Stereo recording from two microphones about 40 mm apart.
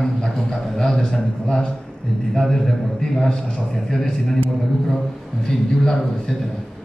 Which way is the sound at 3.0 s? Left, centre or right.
Centre.